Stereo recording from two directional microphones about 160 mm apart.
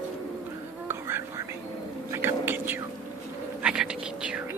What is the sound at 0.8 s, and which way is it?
Whispering, 15° right (ahead or behind).